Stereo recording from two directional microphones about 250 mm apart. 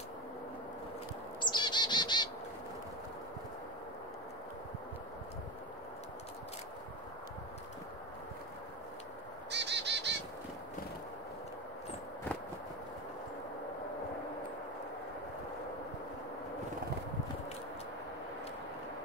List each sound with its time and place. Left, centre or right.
1.4 s bird vocalization: centre
9.5 s bird: right